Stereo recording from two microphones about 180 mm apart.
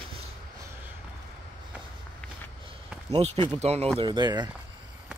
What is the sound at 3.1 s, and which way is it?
Speech, 35° right (ahead or behind).